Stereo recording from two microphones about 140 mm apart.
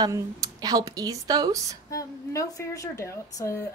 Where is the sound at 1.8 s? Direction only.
25° left (ahead or behind).